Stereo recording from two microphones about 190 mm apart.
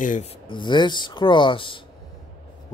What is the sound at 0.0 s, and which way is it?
Speech, 45° left (ahead or behind).